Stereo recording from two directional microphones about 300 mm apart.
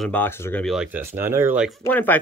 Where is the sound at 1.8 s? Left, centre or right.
Centre.